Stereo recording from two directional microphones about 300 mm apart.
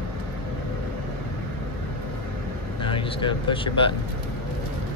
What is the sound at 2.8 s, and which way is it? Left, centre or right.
Speech, centre.